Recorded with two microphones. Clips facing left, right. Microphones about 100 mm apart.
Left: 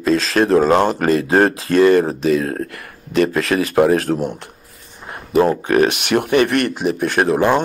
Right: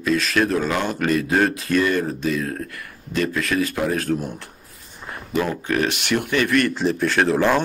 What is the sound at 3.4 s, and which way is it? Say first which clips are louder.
Speech: left 4 dB; 90° left.